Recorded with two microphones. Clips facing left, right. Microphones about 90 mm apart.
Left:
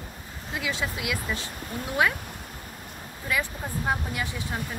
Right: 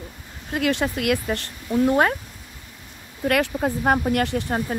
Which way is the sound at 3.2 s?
65° right (ahead or behind).